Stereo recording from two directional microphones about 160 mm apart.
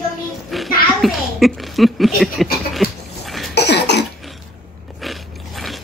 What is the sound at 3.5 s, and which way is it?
Cough, 90° left.